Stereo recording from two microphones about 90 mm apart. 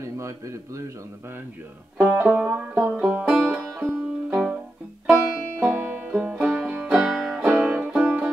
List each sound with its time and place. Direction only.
0.0 s a man's voice: 35° right (ahead or behind)
2.0 s banjo: 15° right (ahead or behind)
2.5 s music: 20° right (ahead or behind)
3.5 s music: 25° right (ahead or behind)
5.1 s music: centre (ahead or behind)
5.6 s music: 15° right (ahead or behind)
7.4 s music: 20° right (ahead or behind)